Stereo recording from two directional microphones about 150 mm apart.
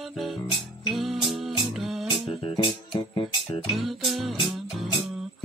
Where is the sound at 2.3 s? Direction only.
35° left (ahead or behind).